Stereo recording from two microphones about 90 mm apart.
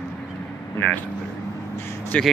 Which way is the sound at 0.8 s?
15° left (ahead or behind).